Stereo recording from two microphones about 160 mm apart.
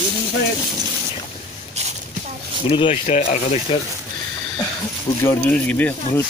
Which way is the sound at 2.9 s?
45° left (ahead or behind).